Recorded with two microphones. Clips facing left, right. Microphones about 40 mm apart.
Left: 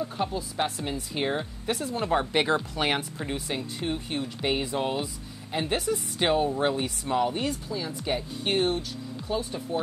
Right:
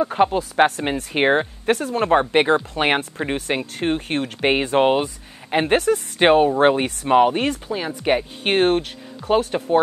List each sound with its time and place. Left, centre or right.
0.0 s speech: right